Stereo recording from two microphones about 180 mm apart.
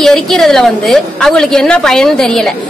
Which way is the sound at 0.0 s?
Centre (ahead or behind).